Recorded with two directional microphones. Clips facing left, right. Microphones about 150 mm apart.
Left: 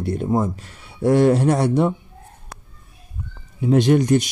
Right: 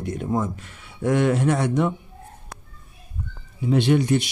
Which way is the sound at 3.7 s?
45° left (ahead or behind).